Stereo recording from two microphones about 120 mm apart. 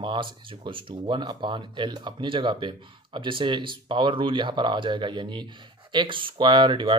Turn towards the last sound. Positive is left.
turn(degrees=-45)  # may be behind; listen again after turning